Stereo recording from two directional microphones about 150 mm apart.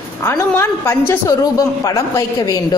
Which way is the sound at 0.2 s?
15° left (ahead or behind).